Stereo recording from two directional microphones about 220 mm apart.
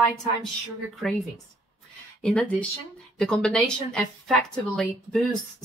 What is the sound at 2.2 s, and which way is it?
A woman's voice, 5° left (ahead or behind).